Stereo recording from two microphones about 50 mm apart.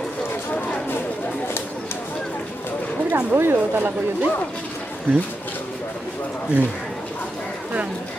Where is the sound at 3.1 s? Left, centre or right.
Right.